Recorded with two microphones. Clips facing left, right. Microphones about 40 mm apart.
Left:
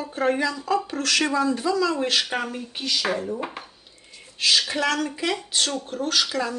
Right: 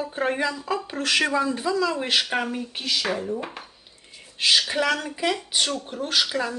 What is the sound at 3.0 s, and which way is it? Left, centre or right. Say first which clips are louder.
Speech: left 1 dB; centre.